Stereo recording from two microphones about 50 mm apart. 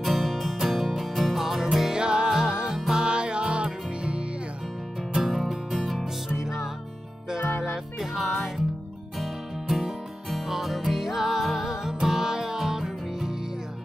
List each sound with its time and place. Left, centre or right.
0.0 s music: centre; by 4.2 s right
5.1 s music: centre